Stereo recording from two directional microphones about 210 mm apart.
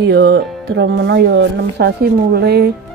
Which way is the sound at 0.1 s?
45° right (ahead or behind).